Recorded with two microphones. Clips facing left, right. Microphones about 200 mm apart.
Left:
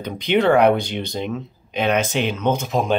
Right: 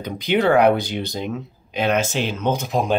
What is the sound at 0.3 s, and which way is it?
Speech, 5° right (ahead or behind).